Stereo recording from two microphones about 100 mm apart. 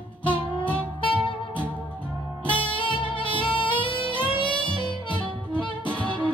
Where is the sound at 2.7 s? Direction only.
55° left (ahead or behind).